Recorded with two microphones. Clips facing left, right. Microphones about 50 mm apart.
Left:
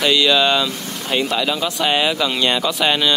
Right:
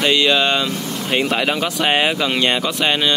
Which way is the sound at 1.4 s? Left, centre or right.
Right.